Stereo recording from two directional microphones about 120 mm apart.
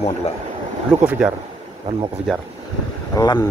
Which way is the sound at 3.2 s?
35° left (ahead or behind).